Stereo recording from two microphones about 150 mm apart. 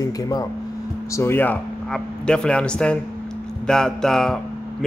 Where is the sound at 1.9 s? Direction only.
5° left (ahead or behind).